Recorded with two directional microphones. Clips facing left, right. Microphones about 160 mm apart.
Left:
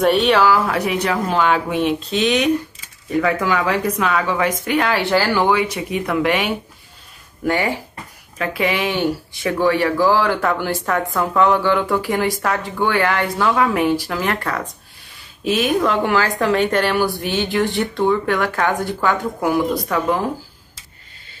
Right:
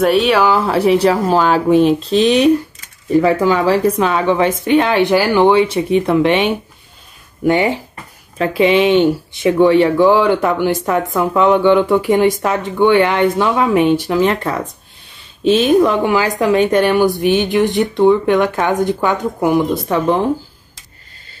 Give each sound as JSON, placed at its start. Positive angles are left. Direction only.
{"t": 0.0, "sound": "speech", "side_deg": 0}
{"t": 0.7, "sound": "speech", "side_deg": -30}